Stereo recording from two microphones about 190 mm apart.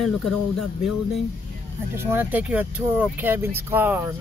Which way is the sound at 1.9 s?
10° right (ahead or behind).